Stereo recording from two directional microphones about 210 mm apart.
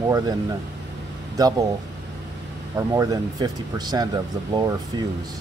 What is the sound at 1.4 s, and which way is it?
Speech, 15° right (ahead or behind).